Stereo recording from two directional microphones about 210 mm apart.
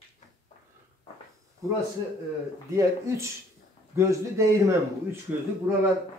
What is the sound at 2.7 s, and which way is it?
A man's voice, 15° right (ahead or behind).